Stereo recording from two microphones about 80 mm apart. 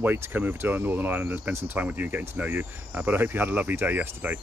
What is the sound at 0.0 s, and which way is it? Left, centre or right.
Speech, right.